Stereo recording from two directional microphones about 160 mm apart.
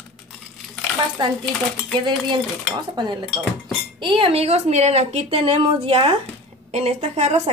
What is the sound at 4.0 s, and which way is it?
A woman's voice, 30° right (ahead or behind).